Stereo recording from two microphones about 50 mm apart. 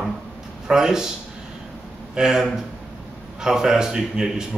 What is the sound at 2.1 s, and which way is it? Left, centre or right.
Speech, centre.